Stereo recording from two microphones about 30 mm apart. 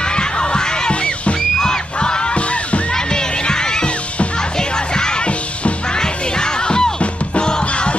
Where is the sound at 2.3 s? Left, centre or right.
Left.